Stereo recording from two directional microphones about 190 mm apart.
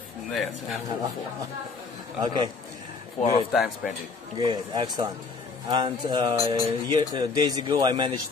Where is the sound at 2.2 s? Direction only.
20° right (ahead or behind).